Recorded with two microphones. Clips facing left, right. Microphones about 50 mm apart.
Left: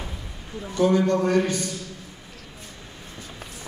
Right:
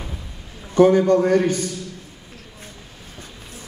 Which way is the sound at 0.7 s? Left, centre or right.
Right.